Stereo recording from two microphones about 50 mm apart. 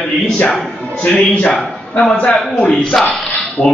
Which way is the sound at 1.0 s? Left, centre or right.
Left.